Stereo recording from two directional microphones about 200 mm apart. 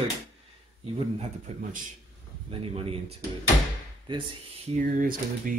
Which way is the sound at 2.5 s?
30° right (ahead or behind).